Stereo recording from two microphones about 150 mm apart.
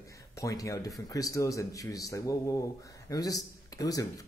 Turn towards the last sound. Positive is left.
turn(degrees=25)  # may be behind; listen again after turning